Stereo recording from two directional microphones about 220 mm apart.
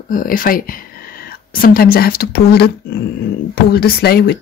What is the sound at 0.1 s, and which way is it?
Speech, 40° left (ahead or behind).